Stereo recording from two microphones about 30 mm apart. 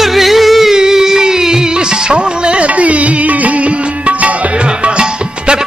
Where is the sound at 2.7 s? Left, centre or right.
Right.